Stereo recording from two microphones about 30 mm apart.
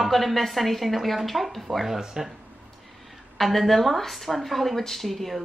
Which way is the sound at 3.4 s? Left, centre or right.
Centre.